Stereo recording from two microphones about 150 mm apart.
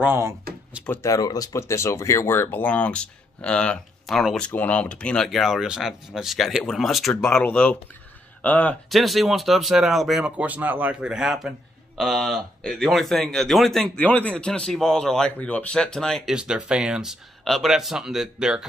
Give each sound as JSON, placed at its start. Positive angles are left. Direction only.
{"t": 0.0, "sound": "speech", "side_deg": -15}
{"t": 0.8, "sound": "speech", "side_deg": 15}